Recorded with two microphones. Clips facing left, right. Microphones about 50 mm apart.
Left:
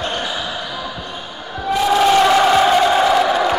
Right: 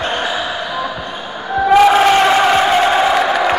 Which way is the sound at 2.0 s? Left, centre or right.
Right.